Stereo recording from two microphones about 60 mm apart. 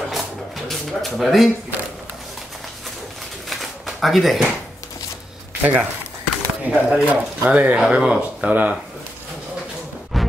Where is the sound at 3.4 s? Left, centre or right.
Centre.